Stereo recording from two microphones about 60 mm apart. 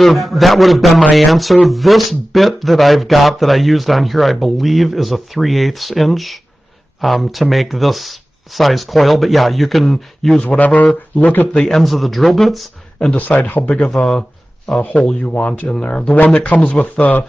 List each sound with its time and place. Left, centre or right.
0.0 s speech: centre
10.6 s speech: left
11.5 s speech: centre
13.1 s speech: left
13.8 s speech: centre
14.8 s speech: left